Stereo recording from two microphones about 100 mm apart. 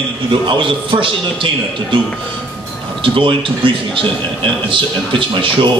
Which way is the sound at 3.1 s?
55° right (ahead or behind).